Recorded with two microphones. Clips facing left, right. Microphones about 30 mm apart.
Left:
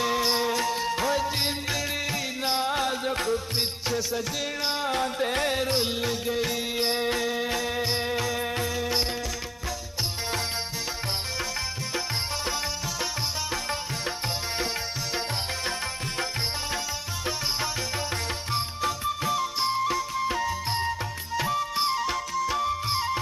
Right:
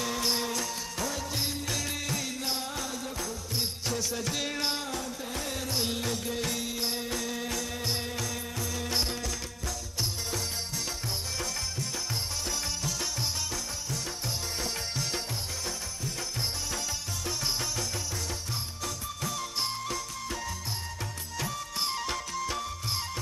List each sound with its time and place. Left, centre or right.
0.0 s music: left
3.9 s music: centre
4.8 s music: left
5.8 s music: left
6.7 s music: left
18.5 s music: left
19.4 s music: left
21.9 s music: centre
22.6 s music: left